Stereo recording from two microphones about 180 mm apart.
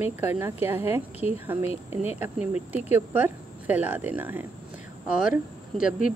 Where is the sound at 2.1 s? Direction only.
10° right (ahead or behind).